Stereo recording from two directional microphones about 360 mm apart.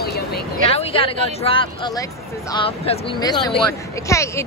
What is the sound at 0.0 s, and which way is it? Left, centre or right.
Vehicle, left.